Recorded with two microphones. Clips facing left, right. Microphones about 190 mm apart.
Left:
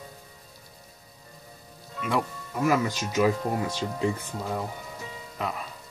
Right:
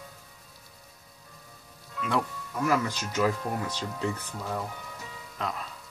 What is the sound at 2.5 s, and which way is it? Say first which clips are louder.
Speech: left 3 dB; 20° left (ahead or behind).